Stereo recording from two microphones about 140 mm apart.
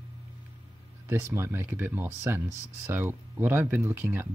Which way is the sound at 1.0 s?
20° right (ahead or behind).